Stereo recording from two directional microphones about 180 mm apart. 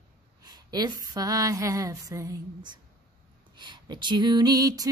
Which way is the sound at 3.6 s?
25° right (ahead or behind).